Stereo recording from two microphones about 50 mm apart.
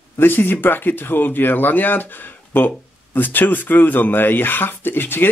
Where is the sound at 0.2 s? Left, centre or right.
Left.